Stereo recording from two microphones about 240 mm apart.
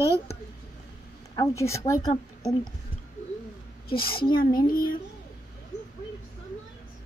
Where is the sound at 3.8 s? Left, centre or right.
Left.